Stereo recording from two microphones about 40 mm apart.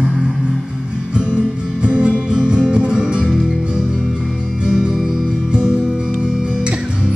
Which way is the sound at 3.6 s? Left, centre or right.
Right.